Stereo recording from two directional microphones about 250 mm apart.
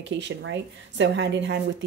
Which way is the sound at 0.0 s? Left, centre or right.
Right.